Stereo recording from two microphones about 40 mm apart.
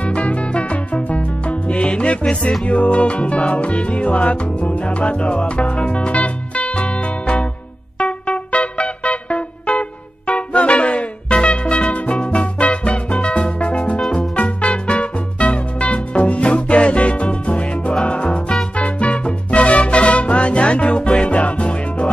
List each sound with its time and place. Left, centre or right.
0.0 s music: left